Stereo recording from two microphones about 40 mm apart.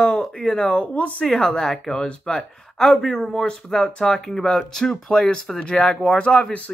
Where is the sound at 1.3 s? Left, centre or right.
Centre.